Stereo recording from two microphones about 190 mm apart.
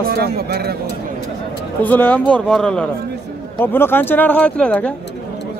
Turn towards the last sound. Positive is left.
turn(degrees=5)  # may be behind; listen again after turning